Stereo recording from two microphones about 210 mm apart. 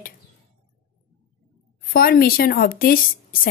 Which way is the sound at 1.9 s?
45° left (ahead or behind).